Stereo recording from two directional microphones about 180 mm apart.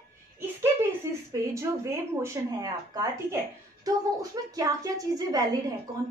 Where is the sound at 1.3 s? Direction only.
15° right (ahead or behind).